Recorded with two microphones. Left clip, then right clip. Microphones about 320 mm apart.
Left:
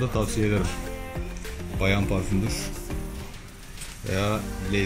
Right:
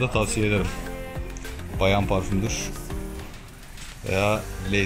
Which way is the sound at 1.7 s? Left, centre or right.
Centre.